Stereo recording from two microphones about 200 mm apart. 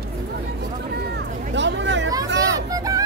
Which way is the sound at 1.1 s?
60° right (ahead or behind).